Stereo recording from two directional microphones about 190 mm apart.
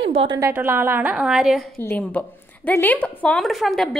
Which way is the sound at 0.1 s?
30° right (ahead or behind).